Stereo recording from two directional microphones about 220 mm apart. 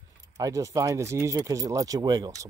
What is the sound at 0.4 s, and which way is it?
Speech, 15° right (ahead or behind).